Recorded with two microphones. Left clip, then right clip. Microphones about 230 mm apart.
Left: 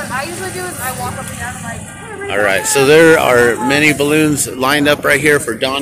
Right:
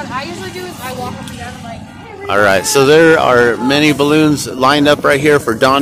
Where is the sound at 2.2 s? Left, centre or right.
Right.